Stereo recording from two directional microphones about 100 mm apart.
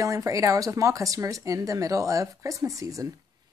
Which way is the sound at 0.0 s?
35° right (ahead or behind).